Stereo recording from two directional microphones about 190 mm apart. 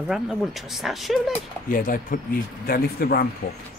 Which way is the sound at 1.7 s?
45° left (ahead or behind).